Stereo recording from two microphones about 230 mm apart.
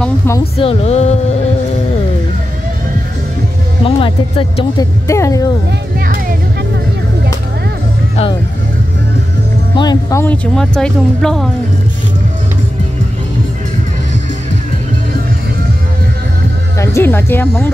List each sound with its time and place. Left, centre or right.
0.4 s speech: left
3.8 s speech: left
5.9 s music: right
9.8 s speech: centre
16.7 s speech: centre